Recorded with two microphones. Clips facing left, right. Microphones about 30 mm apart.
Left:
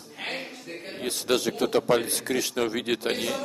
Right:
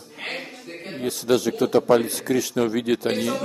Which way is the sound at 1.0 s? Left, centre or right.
Left.